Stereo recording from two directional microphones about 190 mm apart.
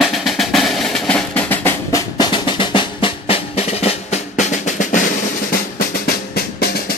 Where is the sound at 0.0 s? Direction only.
Centre (ahead or behind); by 5.0 s 40° left (ahead or behind).